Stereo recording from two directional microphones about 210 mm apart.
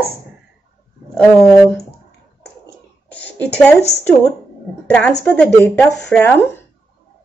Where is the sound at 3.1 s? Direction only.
5° left (ahead or behind).